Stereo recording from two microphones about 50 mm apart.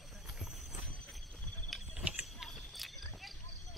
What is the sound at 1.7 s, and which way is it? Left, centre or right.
Cricket, centre.